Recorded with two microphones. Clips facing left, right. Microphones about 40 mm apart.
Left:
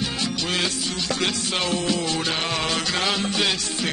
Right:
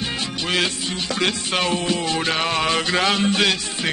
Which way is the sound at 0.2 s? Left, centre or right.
Right.